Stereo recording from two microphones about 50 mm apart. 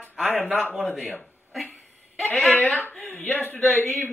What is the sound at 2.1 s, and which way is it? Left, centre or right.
Speech, centre.